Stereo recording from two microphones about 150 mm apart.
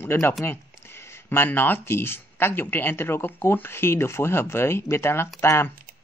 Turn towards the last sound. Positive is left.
turn(degrees=15)  # may be behind; listen again after turning